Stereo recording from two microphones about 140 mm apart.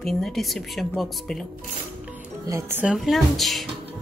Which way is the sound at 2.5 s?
20° right (ahead or behind).